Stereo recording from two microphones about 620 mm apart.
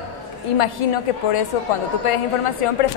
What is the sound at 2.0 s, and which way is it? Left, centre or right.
Speech, left.